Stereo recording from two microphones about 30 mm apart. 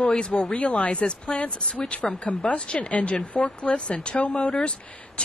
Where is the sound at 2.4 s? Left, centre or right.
Left.